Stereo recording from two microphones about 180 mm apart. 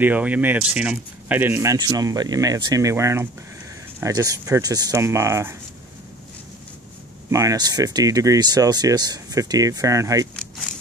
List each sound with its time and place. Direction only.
0.0 s speech: 10° right (ahead or behind)
7.2 s speech: 20° right (ahead or behind)